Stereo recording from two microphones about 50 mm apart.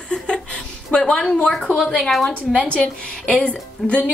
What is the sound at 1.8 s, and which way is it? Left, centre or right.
Speech, centre.